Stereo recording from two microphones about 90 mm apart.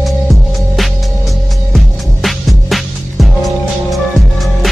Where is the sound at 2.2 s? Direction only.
Centre (ahead or behind).